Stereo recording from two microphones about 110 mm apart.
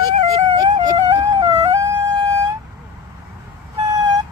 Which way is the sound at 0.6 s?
45° right (ahead or behind).